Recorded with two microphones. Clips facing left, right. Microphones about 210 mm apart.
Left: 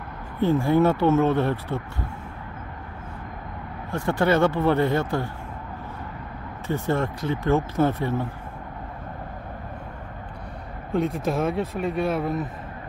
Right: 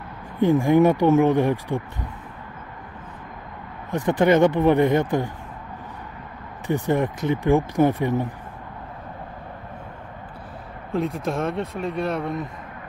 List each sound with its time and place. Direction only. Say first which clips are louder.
0.4 s speech: right 3 dB; 15° right (ahead or behind)
3.9 s speech: right 4 dB; 20° right (ahead or behind)
6.7 s speech: right 3 dB; 15° right (ahead or behind)
10.9 s speech: left 1 dB; centre (ahead or behind)